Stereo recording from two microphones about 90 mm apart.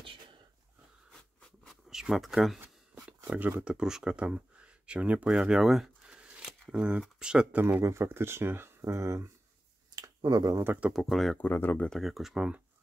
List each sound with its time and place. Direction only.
1.1 s a sound: 5° left (ahead or behind)
1.9 s speech: 5° right (ahead or behind)
2.9 s a sound: 15° right (ahead or behind)
3.3 s speech: 20° right (ahead or behind)
3.6 s speech: 10° right (ahead or behind)
5.3 s a sound: 5° right (ahead or behind)
6.7 s speech: 10° right (ahead or behind)
7.8 s speech: 30° right (ahead or behind)
9.9 s a sound: 45° right (ahead or behind)
10.6 s speech: 20° right (ahead or behind)
10.9 s speech: centre (ahead or behind)
11.3 s speech: 20° left (ahead or behind)
11.9 s speech: centre (ahead or behind)